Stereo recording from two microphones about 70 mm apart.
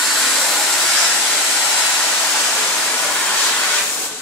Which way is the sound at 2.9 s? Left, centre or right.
Centre.